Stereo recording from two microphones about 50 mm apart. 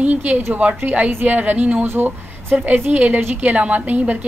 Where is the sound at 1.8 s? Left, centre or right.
Right.